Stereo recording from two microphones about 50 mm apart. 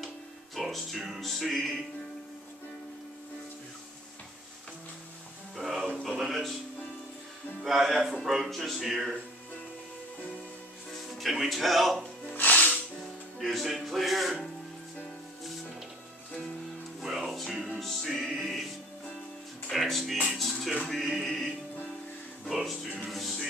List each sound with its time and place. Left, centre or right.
0.6 s music: centre
5.6 s music: centre
7.6 s speech: centre
11.1 s speech: centre
12.3 s music: left
13.4 s speech: centre
17.0 s music: centre
18.0 s speech: centre
19.7 s speech: centre